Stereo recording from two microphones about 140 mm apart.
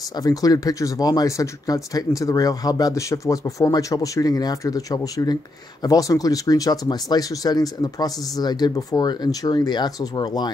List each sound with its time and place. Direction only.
0.1 s speech: 25° left (ahead or behind)